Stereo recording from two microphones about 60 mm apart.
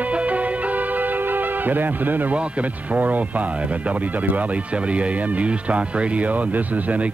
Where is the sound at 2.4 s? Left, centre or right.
Right.